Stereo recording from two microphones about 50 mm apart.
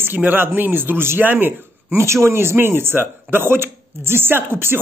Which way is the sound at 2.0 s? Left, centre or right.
Right.